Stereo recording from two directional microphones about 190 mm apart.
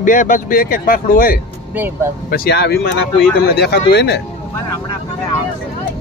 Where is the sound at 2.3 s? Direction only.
60° left (ahead or behind).